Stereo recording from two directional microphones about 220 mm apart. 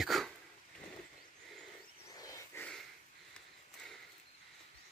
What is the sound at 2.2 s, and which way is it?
Wild animals, 15° left (ahead or behind).